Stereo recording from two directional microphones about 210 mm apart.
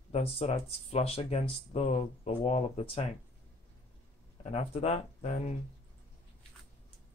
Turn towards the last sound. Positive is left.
turn(degrees=35)  # may be behind; listen again after turning